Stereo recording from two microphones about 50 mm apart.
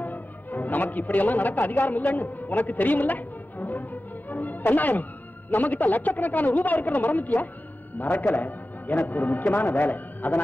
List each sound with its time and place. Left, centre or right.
0.0 s a man's voice: left